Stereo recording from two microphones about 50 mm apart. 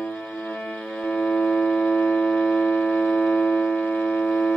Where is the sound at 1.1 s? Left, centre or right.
Left.